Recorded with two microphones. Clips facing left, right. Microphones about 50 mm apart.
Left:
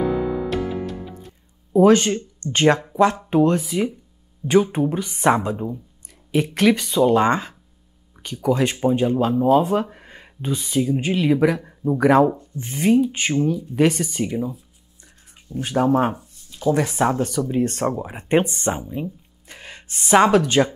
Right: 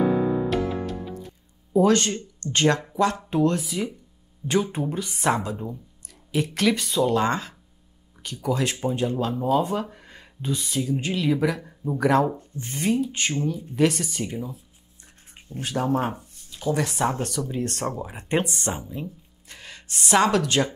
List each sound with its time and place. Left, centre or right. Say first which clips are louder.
0.5 s music: left 1 dB; centre
1.7 s speech: left 5 dB; centre
4.4 s speech: left 7 dB; centre
5.2 s speech: left 6 dB; left
15.3 s a sound: left 7 dB; right
15.6 s speech: left 6 dB; left
16.5 s speech: left 5 dB; centre
18.8 s a sound: left 5 dB; centre
20.0 s speech: left 5 dB; centre